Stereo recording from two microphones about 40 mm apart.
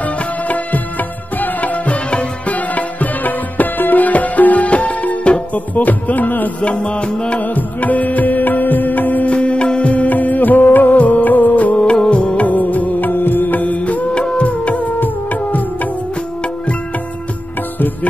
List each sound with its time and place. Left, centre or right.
0.0 s music: left
5.8 s music: left
6.6 s music: left
7.3 s music: left
9.3 s music: left
11.8 s music: left
12.4 s music: left
13.1 s music: left
14.1 s music: left
15.0 s music: left